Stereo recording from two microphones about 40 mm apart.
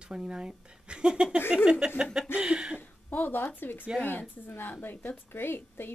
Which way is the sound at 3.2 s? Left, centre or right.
Left.